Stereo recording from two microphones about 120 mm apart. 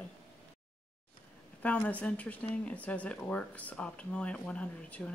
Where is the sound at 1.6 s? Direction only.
10° left (ahead or behind).